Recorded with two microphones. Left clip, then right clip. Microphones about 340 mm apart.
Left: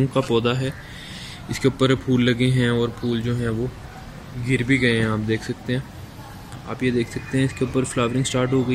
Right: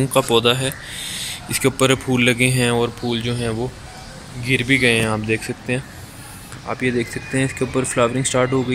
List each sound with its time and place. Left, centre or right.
0.1 s a man's voice: centre
4.6 s speech: right
5.0 s speech: centre